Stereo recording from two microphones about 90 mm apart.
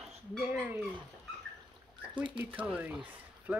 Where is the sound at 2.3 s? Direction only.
15° right (ahead or behind).